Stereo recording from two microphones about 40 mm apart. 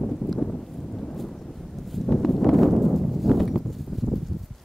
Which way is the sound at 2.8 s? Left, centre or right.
Centre.